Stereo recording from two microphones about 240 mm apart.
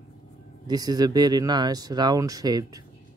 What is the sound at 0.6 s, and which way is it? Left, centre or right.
Speech, centre.